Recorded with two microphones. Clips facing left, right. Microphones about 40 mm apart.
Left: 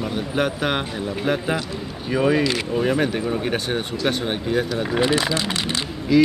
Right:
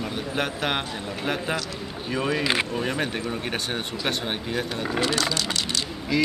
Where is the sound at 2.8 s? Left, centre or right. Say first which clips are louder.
Left 6 dB; centre.